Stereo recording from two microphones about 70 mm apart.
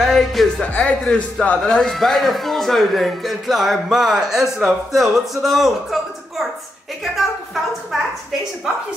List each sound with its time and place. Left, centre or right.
0.0 s music: centre
0.6 s speech: centre
1.6 s speech: centre
7.9 s a woman's voice: centre